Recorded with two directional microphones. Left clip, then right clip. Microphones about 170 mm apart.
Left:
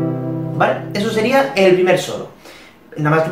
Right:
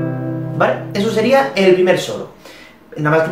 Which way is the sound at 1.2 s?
Centre (ahead or behind).